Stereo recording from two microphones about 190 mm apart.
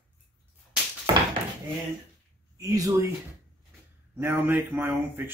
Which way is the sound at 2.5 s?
20° right (ahead or behind).